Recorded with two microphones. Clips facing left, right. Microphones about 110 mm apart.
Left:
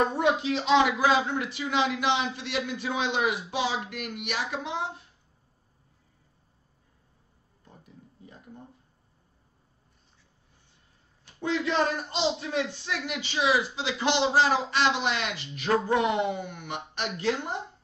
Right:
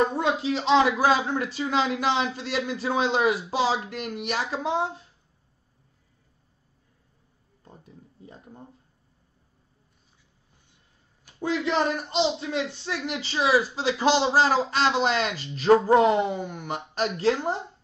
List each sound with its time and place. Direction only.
0.2 s a man's voice: 30° right (ahead or behind)
11.6 s a man's voice: 25° right (ahead or behind)